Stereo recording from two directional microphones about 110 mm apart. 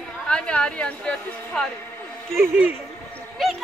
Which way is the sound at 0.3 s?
10° left (ahead or behind).